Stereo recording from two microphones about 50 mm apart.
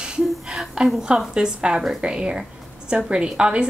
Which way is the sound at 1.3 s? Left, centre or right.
Centre.